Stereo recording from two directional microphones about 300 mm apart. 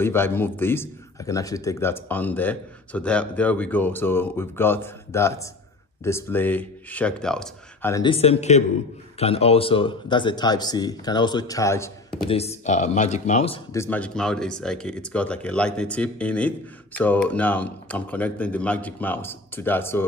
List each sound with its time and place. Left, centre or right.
0.0 s a man's voice: centre
12.3 s speech: centre
13.7 s speech: centre